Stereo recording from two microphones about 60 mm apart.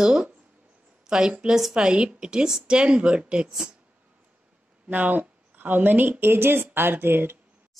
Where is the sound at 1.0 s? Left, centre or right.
Centre.